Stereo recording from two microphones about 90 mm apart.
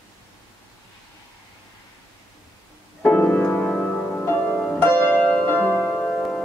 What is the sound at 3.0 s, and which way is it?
Music, 20° left (ahead or behind).